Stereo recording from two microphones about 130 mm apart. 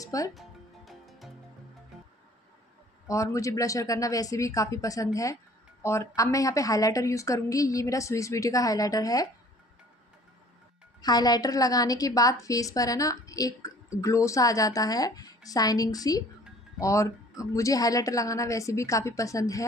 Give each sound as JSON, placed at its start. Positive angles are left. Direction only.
{"t": 0.0, "sound": "music", "side_deg": 25}
{"t": 0.3, "sound": "music", "side_deg": 0}
{"t": 3.1, "sound": "speech", "side_deg": 25}
{"t": 11.0, "sound": "speech", "side_deg": 30}